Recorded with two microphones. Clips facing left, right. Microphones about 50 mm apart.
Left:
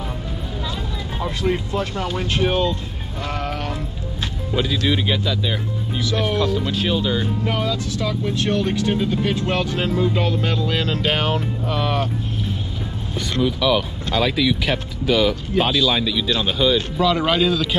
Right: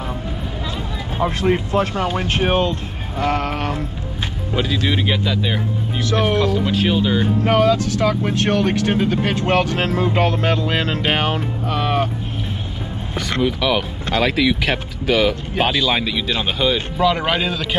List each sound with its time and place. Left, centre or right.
1.2 s speech: right
4.8 s speech: right
6.4 s speech: right
13.3 s speech: right
14.1 s speech: right